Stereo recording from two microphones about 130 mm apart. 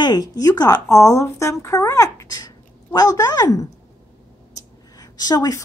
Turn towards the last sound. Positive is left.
turn(degrees=30)  # may be behind; listen again after turning